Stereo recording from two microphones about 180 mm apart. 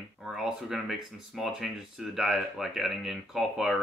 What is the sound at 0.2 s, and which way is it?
Speech, 5° right (ahead or behind).